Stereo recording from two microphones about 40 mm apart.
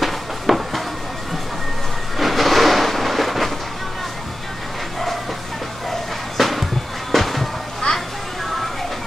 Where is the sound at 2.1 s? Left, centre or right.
Centre.